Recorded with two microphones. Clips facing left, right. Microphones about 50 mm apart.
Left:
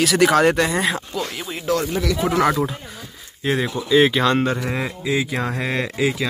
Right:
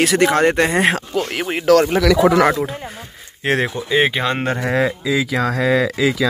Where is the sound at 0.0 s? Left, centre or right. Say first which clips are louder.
Right 1 dB; right.